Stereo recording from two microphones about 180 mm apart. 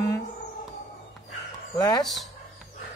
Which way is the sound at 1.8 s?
20° left (ahead or behind).